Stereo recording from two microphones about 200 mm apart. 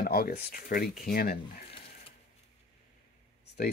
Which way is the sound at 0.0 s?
50° left (ahead or behind).